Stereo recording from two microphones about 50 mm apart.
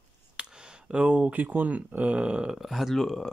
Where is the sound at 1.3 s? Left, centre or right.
Right.